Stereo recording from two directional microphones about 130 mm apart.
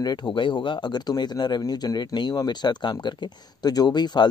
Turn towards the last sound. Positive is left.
turn(degrees=35)  # may be behind; listen again after turning